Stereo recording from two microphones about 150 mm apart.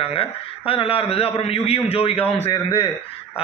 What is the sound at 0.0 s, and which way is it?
A man's voice, 40° left (ahead or behind).